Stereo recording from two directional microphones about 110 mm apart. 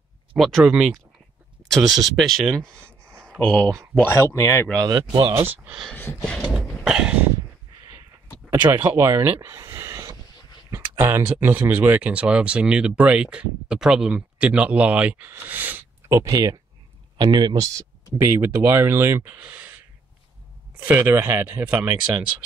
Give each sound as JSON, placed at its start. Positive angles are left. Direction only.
{"t": 0.4, "sound": "speech", "side_deg": 0}
{"t": 3.6, "sound": "speech", "side_deg": -30}
{"t": 4.1, "sound": "speech", "side_deg": 25}
{"t": 4.7, "sound": "speech", "side_deg": -35}
{"t": 5.2, "sound": "speech", "side_deg": -20}
{"t": 6.5, "sound": "cough", "side_deg": -5}
{"t": 8.5, "sound": "speech", "side_deg": -15}
{"t": 9.0, "sound": "speech", "side_deg": -30}
{"t": 16.1, "sound": "speech", "side_deg": -30}
{"t": 18.1, "sound": "speech", "side_deg": -20}
{"t": 20.8, "sound": "speech", "side_deg": -20}